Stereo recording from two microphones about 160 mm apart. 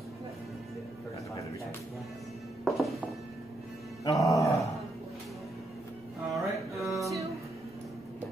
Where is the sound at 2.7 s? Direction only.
Centre (ahead or behind).